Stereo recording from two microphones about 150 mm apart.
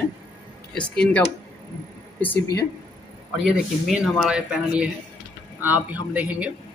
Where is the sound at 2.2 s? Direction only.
15° left (ahead or behind).